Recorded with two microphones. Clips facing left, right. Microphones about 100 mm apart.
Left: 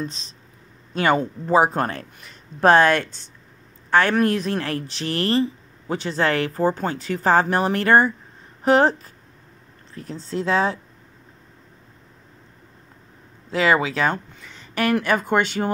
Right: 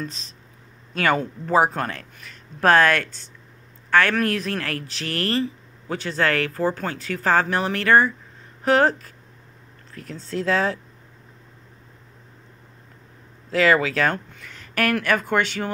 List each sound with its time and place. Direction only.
0.9 s speech: 25° left (ahead or behind)
1.7 s a man's voice: 30° left (ahead or behind)
13.5 s speech: 20° left (ahead or behind)